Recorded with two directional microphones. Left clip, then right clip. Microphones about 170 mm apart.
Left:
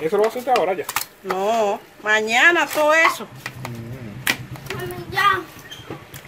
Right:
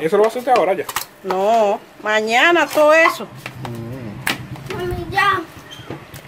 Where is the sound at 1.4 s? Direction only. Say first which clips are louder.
Right 5 dB; 30° right (ahead or behind).